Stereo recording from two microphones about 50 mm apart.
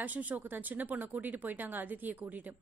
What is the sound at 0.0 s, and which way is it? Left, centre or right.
A woman's voice, right.